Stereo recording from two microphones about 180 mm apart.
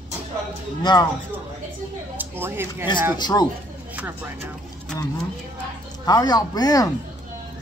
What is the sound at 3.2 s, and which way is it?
Speech, 20° left (ahead or behind).